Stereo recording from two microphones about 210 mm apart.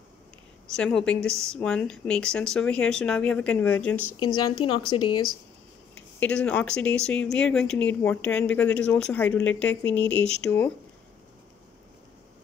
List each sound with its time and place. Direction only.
0.7 s speech: 5° left (ahead or behind)
4.2 s a woman's voice: 25° left (ahead or behind)
6.1 s speech: 5° left (ahead or behind)